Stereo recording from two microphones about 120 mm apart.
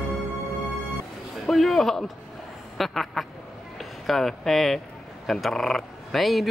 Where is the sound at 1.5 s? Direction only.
Centre (ahead or behind).